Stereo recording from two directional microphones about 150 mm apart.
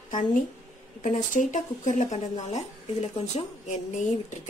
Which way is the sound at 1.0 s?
60° left (ahead or behind).